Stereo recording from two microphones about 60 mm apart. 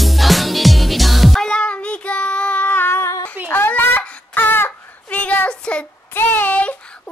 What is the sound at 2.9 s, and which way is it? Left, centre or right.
Humming, left.